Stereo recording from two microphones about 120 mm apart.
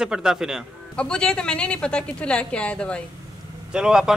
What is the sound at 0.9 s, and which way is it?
A woman's voice, 10° left (ahead or behind).